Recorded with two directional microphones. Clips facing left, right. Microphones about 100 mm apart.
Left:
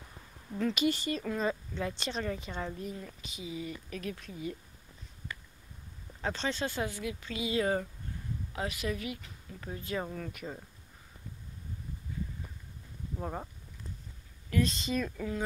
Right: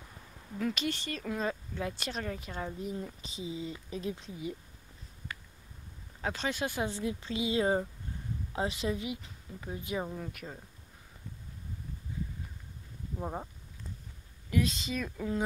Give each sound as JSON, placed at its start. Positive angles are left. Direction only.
{"t": 0.7, "sound": "a woman's voice", "side_deg": 5}
{"t": 2.9, "sound": "speech", "side_deg": -20}
{"t": 6.2, "sound": "speech", "side_deg": -10}
{"t": 6.9, "sound": "speech", "side_deg": -30}
{"t": 10.3, "sound": "a woman's voice", "side_deg": 0}
{"t": 13.2, "sound": "speech", "side_deg": -10}
{"t": 14.5, "sound": "a woman's voice", "side_deg": -5}